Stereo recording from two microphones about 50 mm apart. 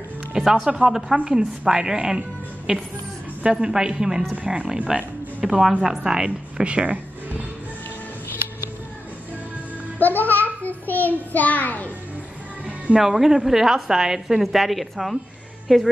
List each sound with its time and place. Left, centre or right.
0.3 s a woman's voice: centre
2.7 s speech: right
3.4 s a woman's voice: centre
6.6 s a sound: right
9.9 s child singing: left
12.9 s a woman's voice: centre